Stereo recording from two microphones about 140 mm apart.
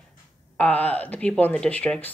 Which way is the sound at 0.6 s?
10° left (ahead or behind).